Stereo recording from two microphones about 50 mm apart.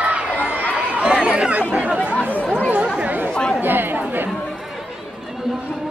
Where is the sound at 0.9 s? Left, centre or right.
Right.